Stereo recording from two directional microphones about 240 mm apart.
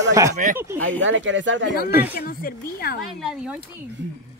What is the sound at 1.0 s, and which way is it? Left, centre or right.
Speech, right.